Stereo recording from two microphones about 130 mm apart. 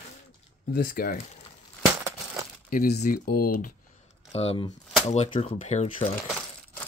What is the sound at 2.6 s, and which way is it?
Speech, 90° left.